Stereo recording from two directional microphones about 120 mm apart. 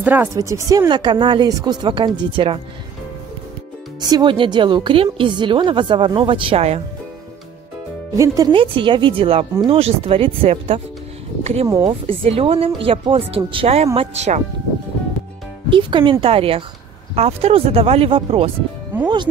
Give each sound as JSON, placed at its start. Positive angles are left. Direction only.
{"t": 0.0, "sound": "speech", "side_deg": -15}
{"t": 0.3, "sound": "speech", "side_deg": -25}
{"t": 4.0, "sound": "a woman's voice", "side_deg": -40}
{"t": 8.2, "sound": "speech", "side_deg": -30}
{"t": 8.5, "sound": "a woman's voice", "side_deg": -45}
{"t": 11.6, "sound": "speech", "side_deg": -30}
{"t": 12.1, "sound": "a woman's voice", "side_deg": -50}
{"t": 13.9, "sound": "speech", "side_deg": -70}
{"t": 15.7, "sound": "a woman's voice", "side_deg": -45}
{"t": 18.9, "sound": "music", "side_deg": -20}